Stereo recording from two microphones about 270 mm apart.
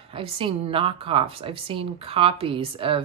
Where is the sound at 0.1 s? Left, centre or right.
Centre.